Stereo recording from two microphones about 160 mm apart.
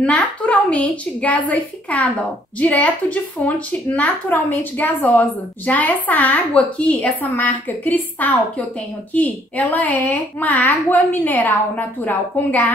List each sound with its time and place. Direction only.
0.0 s a child's voice: 10° left (ahead or behind)